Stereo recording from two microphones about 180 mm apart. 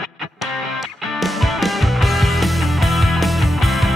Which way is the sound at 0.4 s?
Centre (ahead or behind).